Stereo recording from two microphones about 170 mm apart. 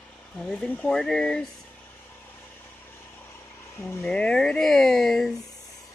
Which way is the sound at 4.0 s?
5° left (ahead or behind).